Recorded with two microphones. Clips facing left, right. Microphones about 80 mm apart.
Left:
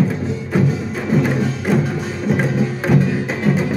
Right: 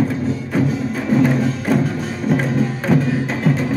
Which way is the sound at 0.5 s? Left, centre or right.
Centre.